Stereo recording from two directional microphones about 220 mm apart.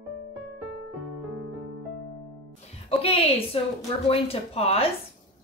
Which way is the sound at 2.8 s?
25° left (ahead or behind).